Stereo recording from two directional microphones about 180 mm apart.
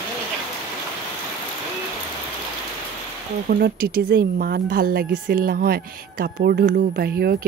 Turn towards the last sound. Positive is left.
turn(degrees=-60)  # may be behind; listen again after turning